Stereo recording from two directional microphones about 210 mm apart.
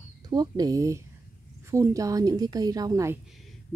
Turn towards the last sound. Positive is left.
turn(degrees=-15)  # may be behind; listen again after turning